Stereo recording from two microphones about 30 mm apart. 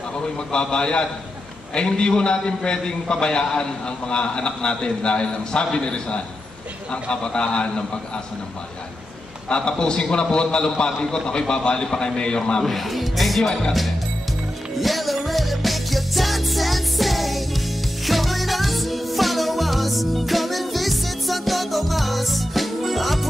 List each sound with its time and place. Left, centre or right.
0.5 s a man's voice: left
9.5 s a man's voice: left
12.6 s speech: centre
13.4 s a man's voice: left
14.8 s music: centre